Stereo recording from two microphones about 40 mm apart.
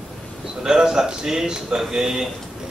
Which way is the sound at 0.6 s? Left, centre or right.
Centre.